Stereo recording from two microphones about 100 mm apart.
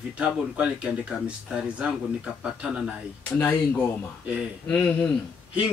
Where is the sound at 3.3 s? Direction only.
15° left (ahead or behind).